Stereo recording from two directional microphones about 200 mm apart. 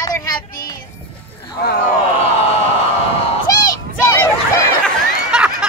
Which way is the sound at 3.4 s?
15° left (ahead or behind).